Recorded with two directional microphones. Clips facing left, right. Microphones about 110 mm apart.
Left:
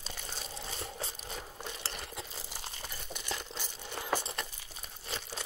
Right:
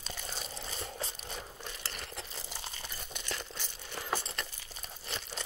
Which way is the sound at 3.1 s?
15° left (ahead or behind).